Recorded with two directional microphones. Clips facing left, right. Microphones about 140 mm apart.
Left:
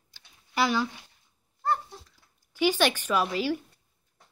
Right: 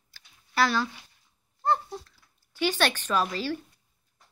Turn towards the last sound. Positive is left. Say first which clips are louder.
# left 1 dB
turn(degrees=10)  # may be behind; listen again after turning